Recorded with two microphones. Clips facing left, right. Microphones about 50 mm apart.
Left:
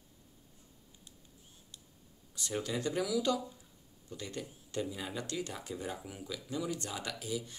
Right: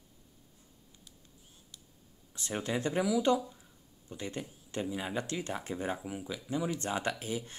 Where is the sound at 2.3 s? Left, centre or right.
Right.